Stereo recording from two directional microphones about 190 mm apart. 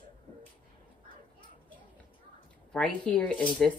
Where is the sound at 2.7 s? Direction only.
5° left (ahead or behind).